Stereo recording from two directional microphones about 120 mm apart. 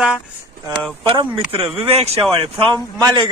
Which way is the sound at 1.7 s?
55° right (ahead or behind).